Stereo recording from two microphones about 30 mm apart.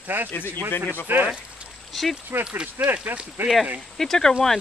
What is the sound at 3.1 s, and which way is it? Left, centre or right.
Speech, right.